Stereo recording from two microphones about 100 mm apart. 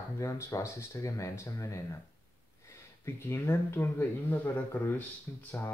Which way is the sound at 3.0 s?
25° left (ahead or behind).